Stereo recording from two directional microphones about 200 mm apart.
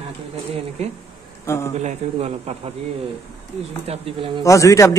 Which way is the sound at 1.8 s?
35° right (ahead or behind).